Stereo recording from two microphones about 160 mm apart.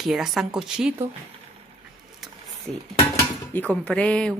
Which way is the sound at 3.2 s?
10° left (ahead or behind).